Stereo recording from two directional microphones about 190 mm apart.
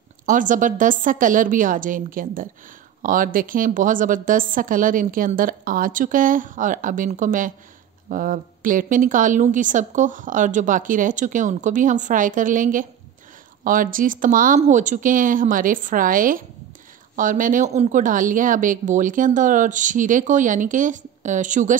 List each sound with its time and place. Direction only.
0.3 s a woman's voice: 45° right (ahead or behind)